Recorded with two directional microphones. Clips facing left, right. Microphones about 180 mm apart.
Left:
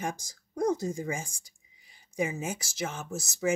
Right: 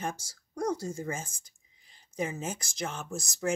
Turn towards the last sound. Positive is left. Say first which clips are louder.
# left 2 dB
turn(degrees=5)  # may be behind; listen again after turning